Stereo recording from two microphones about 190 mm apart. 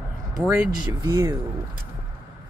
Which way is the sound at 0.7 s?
20° right (ahead or behind).